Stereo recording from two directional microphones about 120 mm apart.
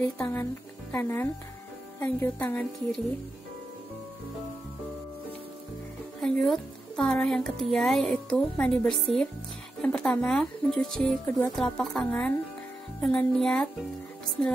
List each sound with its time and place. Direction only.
0.2 s a woman's voice: 25° left (ahead or behind)
6.2 s a woman's voice: 5° left (ahead or behind)